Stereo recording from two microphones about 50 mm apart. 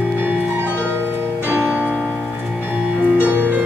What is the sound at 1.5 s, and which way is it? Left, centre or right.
Music, right.